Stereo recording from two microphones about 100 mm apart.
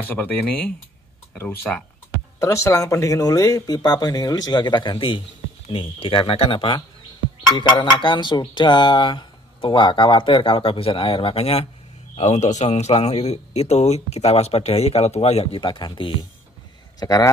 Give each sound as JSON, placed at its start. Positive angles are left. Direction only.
{"t": 0.0, "sound": "speech", "side_deg": 20}
{"t": 2.4, "sound": "speech", "side_deg": 30}
{"t": 12.2, "sound": "speech", "side_deg": 90}
{"t": 15.6, "sound": "speech", "side_deg": 50}
{"t": 17.0, "sound": "speech", "side_deg": 40}